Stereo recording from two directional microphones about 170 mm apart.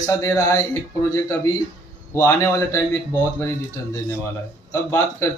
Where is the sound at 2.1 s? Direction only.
20° left (ahead or behind).